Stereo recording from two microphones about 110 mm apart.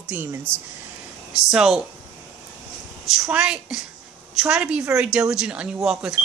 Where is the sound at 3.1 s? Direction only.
5° right (ahead or behind).